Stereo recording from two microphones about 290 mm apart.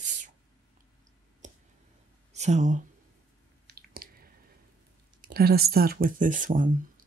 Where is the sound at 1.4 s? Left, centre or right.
Right.